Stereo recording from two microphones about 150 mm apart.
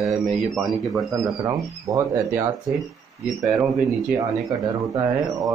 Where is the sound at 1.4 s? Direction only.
20° right (ahead or behind).